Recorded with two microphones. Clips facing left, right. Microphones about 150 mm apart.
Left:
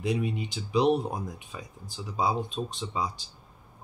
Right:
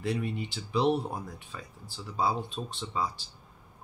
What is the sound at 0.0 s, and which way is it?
Speech, 15° left (ahead or behind).